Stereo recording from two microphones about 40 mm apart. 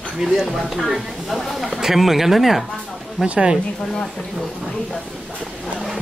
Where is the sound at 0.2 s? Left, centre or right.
Centre.